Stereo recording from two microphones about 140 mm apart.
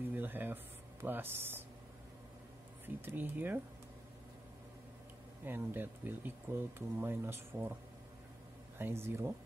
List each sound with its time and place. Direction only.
0.1 s a sound: 15° right (ahead or behind)
1.0 s speech: 15° right (ahead or behind)
3.1 s speech: 15° right (ahead or behind)
5.4 s speech: 15° right (ahead or behind)
8.7 s speech: 15° right (ahead or behind)